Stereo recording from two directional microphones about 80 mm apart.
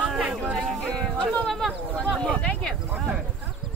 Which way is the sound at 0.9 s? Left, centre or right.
Centre.